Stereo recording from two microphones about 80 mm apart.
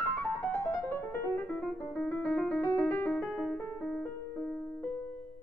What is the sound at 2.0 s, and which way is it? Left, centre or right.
Piano, centre.